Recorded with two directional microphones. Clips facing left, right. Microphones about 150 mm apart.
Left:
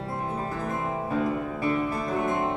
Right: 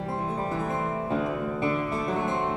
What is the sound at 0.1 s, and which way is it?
Music, 25° right (ahead or behind).